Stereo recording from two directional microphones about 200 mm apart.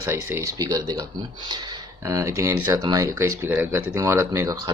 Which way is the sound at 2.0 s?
15° right (ahead or behind).